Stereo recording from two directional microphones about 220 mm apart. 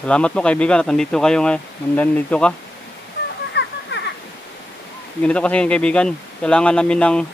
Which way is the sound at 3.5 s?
50° left (ahead or behind).